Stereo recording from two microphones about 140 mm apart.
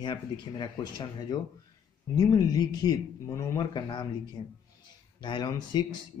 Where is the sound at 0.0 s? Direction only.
30° left (ahead or behind).